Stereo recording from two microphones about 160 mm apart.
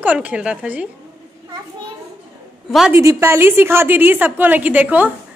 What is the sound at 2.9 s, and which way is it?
A woman's voice, 15° right (ahead or behind).